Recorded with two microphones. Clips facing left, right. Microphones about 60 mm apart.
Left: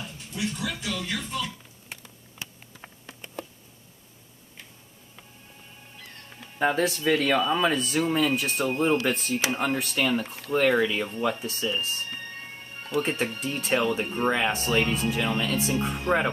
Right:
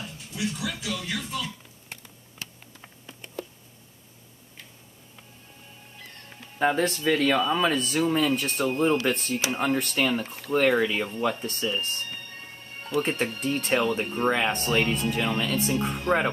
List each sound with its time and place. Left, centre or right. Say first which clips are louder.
0.0 s speech: even; centre
2.3 s a sound: even; left
6.6 s speech: even; centre
11.1 s speech: even; centre
13.1 s speech: right 2 dB; centre